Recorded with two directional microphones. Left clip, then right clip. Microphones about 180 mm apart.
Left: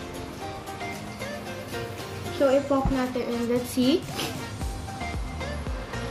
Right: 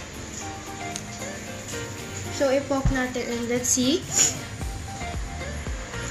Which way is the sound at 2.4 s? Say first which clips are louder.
Left 1 dB; 5° left (ahead or behind).